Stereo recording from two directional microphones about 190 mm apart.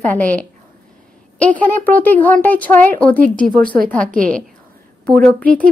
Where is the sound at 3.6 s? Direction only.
50° right (ahead or behind).